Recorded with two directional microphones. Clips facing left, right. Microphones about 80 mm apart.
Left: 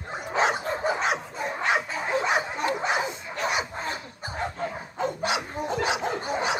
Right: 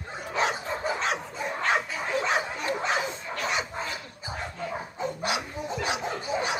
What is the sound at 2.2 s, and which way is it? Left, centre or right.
Bow-wow, centre.